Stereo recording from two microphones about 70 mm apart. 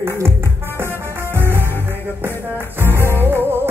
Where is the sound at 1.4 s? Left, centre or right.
Right.